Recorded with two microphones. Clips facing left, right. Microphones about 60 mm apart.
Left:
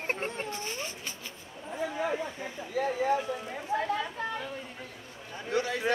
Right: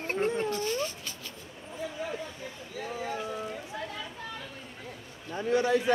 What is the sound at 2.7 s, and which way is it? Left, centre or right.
Speech, left.